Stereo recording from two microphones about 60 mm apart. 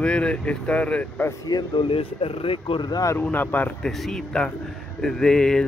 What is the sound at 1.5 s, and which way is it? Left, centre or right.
Speech, left.